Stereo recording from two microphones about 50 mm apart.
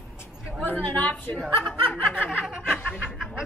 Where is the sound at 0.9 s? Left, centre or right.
Left.